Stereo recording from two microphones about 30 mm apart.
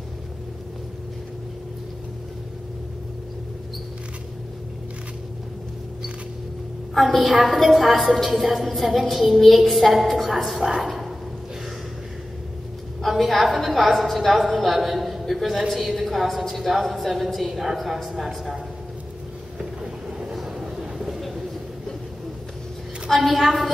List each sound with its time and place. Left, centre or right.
6.9 s a sound: centre
7.4 s a woman's voice: centre
10.8 s a sound: centre
13.1 s a woman's voice: centre
19.6 s boat: right
20.3 s vehicle: centre
23.2 s a woman's voice: centre